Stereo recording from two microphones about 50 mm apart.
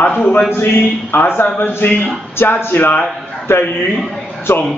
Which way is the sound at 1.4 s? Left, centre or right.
Left.